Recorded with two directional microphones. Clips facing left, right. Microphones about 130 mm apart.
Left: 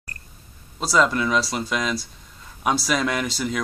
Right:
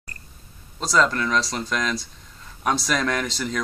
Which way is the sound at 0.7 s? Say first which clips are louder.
Left 1 dB; 10° left (ahead or behind).